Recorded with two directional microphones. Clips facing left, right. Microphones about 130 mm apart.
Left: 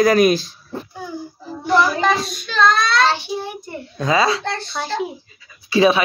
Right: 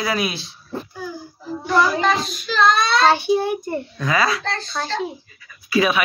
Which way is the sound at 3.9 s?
25° left (ahead or behind).